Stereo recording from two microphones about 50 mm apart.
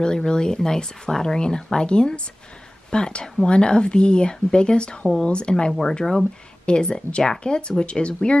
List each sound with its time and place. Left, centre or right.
0.0 s speech: centre